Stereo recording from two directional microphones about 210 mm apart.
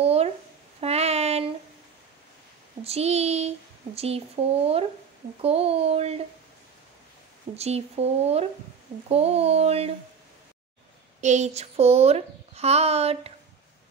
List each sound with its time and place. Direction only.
0.0 s a sound: 30° right (ahead or behind)
2.8 s a child's voice: 30° right (ahead or behind)
7.5 s a child's voice: 30° right (ahead or behind)
11.1 s a child's voice: 35° right (ahead or behind)